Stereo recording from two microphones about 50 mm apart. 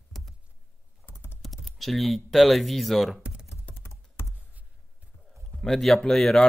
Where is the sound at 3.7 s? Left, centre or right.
Left.